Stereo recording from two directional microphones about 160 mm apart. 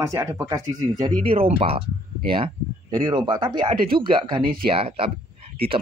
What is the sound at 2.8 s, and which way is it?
Speech, 25° right (ahead or behind).